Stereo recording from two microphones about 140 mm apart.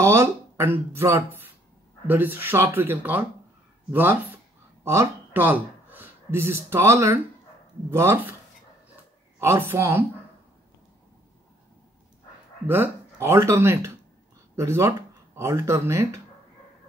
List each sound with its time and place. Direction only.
0.0 s a woman's voice: 20° right (ahead or behind)
9.4 s a woman's voice: 20° right (ahead or behind)
12.6 s speech: 15° right (ahead or behind)